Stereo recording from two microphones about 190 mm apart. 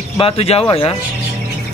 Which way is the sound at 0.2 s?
30° left (ahead or behind).